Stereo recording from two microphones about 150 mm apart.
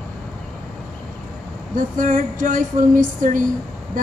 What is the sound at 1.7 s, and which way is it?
Speech, 65° right (ahead or behind).